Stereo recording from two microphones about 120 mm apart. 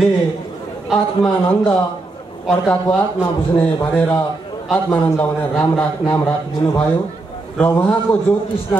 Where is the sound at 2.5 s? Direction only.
10° left (ahead or behind).